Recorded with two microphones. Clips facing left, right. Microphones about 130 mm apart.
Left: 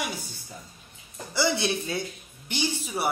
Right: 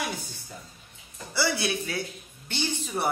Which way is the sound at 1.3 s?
20° left (ahead or behind).